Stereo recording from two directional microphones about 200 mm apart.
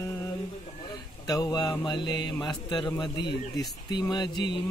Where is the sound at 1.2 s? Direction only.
20° left (ahead or behind).